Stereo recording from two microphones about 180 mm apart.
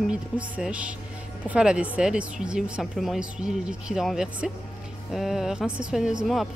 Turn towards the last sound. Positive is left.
turn(degrees=-5)  # may be behind; listen again after turning